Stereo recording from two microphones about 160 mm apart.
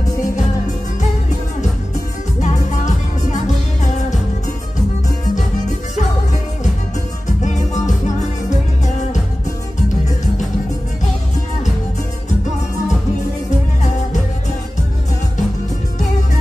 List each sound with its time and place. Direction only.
0.0 s music: 50° left (ahead or behind)
2.4 s music: 50° left (ahead or behind)
7.2 s music: 50° left (ahead or behind)